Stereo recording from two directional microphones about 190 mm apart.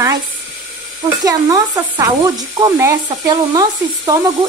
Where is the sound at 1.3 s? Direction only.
20° right (ahead or behind).